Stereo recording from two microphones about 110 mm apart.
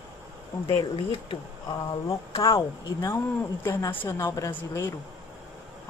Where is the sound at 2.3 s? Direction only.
30° left (ahead or behind).